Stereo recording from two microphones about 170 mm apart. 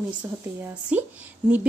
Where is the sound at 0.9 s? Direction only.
10° right (ahead or behind).